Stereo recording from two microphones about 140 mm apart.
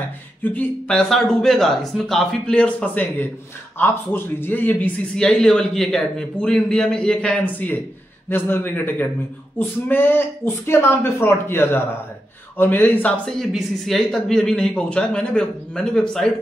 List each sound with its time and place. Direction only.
0.4 s a man's voice: 10° left (ahead or behind)